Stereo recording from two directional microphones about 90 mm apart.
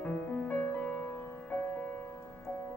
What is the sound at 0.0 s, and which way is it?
Music, 15° left (ahead or behind).